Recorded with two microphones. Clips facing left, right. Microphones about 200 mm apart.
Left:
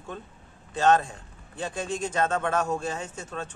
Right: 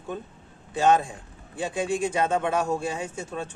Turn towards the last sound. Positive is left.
turn(degrees=-10)  # may be behind; listen again after turning